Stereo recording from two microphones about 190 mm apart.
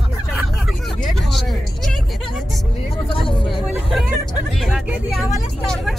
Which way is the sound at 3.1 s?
25° left (ahead or behind).